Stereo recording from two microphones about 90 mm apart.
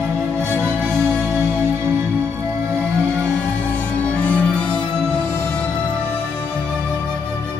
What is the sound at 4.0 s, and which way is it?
Music, 15° left (ahead or behind).